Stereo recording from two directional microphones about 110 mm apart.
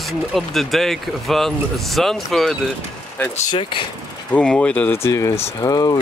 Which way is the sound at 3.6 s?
50° left (ahead or behind).